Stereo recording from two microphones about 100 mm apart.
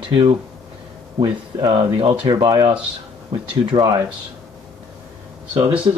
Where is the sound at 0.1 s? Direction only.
65° right (ahead or behind).